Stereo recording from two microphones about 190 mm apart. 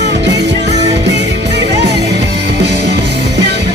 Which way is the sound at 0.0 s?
65° right (ahead or behind).